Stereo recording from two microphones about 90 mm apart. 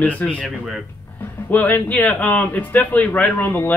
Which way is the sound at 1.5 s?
15° left (ahead or behind).